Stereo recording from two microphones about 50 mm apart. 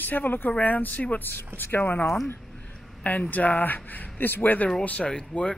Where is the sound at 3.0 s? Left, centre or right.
Left.